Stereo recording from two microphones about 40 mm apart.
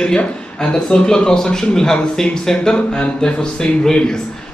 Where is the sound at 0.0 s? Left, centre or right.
Left.